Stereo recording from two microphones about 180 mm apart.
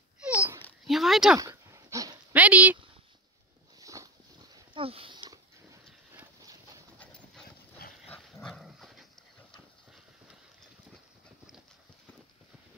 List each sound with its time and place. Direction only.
0.3 s babbling: 10° right (ahead or behind)
0.8 s speech: centre (ahead or behind)
1.4 s dog: 15° right (ahead or behind)
3.8 s a sound: 20° right (ahead or behind)
4.6 s dog: 30° right (ahead or behind)
7.0 s dog: 5° left (ahead or behind)